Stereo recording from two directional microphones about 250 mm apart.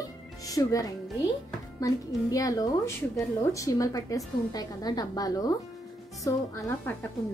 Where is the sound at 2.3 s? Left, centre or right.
Centre.